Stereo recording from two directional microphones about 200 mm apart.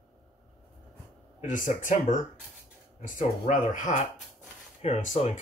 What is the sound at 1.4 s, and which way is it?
Speech, 40° left (ahead or behind).